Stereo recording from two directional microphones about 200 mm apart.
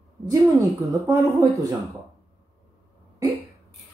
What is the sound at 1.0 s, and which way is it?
Speech, 15° right (ahead or behind).